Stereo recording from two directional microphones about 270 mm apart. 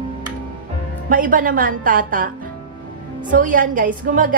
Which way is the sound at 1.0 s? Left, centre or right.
Right.